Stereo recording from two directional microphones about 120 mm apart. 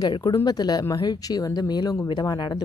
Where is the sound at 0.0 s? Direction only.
35° left (ahead or behind).